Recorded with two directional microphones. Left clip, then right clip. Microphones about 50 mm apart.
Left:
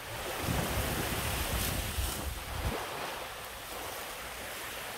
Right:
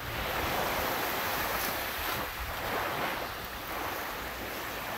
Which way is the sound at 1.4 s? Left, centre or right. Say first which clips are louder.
Right 4 dB; right.